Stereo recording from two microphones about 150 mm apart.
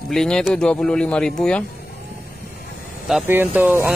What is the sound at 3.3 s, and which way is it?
Speech, 15° right (ahead or behind).